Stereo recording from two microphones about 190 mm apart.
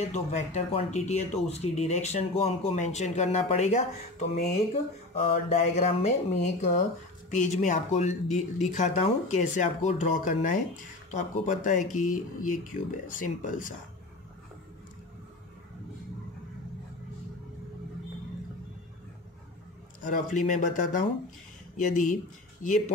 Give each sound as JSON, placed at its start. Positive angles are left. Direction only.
{"t": 0.0, "sound": "speech", "side_deg": 35}
{"t": 20.1, "sound": "speech", "side_deg": 40}